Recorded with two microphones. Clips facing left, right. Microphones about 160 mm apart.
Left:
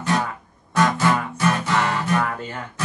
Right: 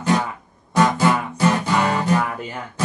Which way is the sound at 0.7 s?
10° right (ahead or behind).